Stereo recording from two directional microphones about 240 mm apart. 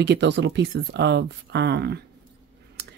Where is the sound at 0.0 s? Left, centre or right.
Right.